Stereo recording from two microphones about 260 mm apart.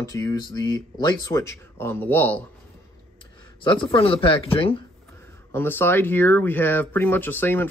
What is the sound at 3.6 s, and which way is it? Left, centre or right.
Speech, centre.